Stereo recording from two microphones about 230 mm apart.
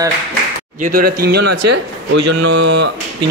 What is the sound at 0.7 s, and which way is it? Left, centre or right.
Speech, right.